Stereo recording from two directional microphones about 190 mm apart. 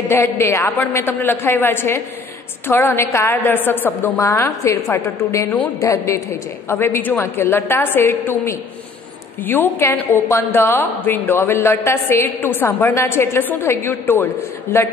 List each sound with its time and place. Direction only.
0.1 s a woman's voice: 15° left (ahead or behind)